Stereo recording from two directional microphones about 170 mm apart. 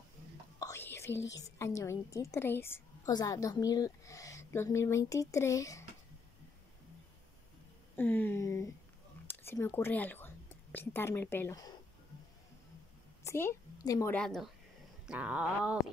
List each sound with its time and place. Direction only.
0.6 s whispering: 15° left (ahead or behind)
1.3 s a woman's voice: 20° left (ahead or behind)
7.9 s a woman's voice: 10° left (ahead or behind)
13.2 s a woman's voice: 15° left (ahead or behind)
14.1 s speech: centre (ahead or behind)
15.0 s a sound: 5° right (ahead or behind)